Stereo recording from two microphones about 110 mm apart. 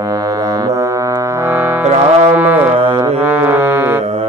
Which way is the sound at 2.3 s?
15° right (ahead or behind).